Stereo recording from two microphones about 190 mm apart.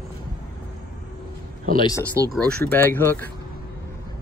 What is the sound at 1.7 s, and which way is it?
Speech, 25° left (ahead or behind).